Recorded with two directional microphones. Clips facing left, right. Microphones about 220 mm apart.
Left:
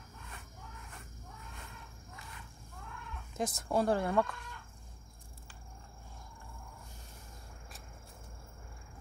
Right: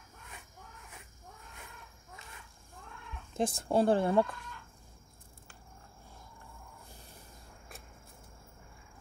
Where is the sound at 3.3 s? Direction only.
30° right (ahead or behind).